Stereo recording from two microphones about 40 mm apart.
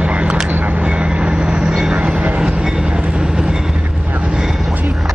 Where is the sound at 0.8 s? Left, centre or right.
Right.